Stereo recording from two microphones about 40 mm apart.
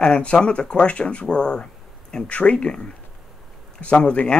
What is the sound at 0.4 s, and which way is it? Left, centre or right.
Speech, left.